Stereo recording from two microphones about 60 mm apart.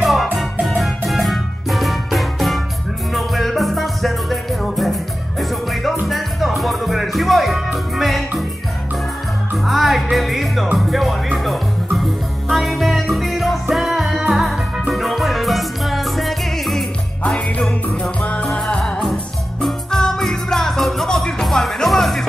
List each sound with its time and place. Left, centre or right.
0.0 s music: centre
9.7 s music: centre
18.2 s music: centre